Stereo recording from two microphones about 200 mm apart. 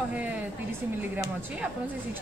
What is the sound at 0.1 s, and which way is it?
Speech, 5° right (ahead or behind).